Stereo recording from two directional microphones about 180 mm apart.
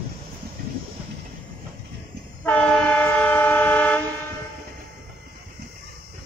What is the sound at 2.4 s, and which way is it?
Train, 5° left (ahead or behind).